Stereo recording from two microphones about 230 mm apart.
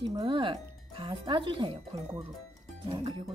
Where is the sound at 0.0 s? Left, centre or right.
Centre.